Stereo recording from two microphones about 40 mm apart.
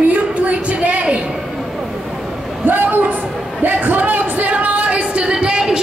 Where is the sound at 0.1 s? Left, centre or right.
Right.